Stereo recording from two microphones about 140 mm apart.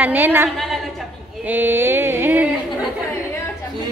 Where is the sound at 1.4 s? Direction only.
15° right (ahead or behind).